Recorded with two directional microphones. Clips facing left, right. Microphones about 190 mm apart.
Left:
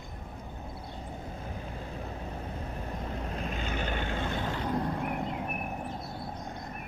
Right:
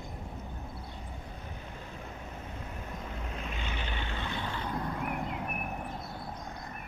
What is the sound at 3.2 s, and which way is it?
Vehicle, 35° left (ahead or behind).